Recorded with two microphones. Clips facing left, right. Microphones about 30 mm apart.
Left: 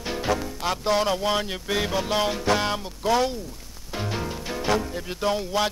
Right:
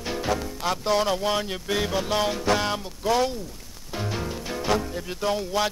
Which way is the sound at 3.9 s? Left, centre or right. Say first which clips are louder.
Even; centre.